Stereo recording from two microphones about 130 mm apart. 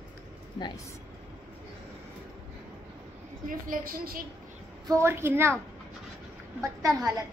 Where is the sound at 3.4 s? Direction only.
90° right.